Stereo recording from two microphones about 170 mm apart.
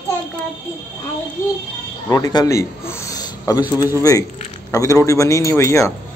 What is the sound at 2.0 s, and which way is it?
A man's voice, 20° left (ahead or behind).